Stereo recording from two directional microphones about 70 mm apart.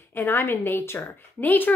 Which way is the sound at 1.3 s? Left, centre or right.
Left.